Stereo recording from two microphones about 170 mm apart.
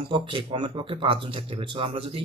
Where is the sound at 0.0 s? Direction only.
30° right (ahead or behind).